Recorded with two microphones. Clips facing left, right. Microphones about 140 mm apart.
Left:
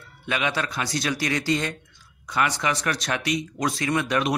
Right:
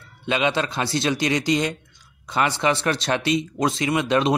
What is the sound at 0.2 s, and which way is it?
A man's voice, 25° right (ahead or behind).